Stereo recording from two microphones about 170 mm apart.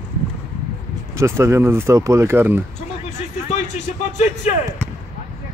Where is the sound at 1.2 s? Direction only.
15° right (ahead or behind).